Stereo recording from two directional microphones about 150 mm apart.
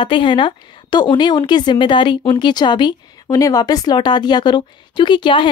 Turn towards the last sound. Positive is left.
turn(degrees=35)  # may be behind; listen again after turning